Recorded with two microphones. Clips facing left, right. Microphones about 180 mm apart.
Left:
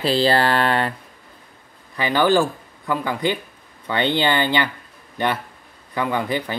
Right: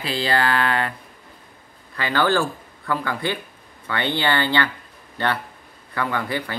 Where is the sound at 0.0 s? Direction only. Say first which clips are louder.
Left 5 dB; 35° left (ahead or behind).